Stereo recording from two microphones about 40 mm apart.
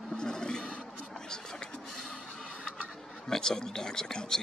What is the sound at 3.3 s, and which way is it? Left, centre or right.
Speech, centre.